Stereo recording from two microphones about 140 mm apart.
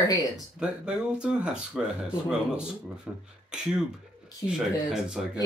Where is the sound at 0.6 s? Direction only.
5° right (ahead or behind).